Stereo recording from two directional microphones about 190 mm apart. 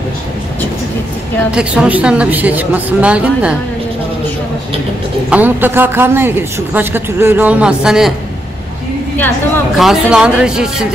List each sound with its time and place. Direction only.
1.5 s a woman's voice: 5° right (ahead or behind)
5.3 s a woman's voice: 10° right (ahead or behind)
9.8 s speech: centre (ahead or behind)